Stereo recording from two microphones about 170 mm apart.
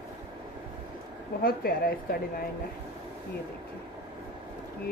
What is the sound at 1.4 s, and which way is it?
Speech, 60° left (ahead or behind).